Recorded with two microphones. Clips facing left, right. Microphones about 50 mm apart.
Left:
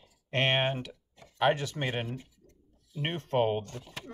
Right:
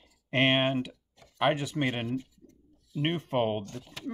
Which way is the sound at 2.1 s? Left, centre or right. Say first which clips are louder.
Right 7 dB; left.